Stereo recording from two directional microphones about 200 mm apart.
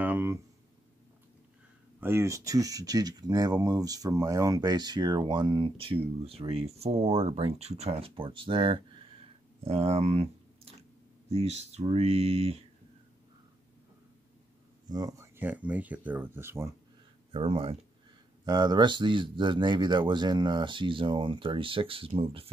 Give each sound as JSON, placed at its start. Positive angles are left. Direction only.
{"t": 0.0, "sound": "a sound", "side_deg": -10}
{"t": 2.0, "sound": "speech", "side_deg": -10}
{"t": 14.9, "sound": "speech", "side_deg": -20}
{"t": 17.3, "sound": "speech", "side_deg": -25}